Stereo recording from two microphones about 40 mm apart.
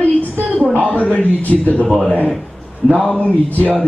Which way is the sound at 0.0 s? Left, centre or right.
Left.